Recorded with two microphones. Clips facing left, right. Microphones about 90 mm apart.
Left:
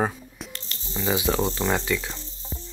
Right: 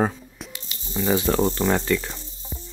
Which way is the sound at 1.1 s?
15° left (ahead or behind).